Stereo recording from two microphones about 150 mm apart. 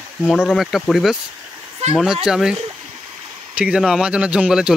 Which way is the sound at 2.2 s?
5° right (ahead or behind).